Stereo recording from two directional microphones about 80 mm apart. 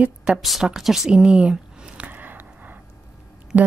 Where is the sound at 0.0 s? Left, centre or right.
Centre.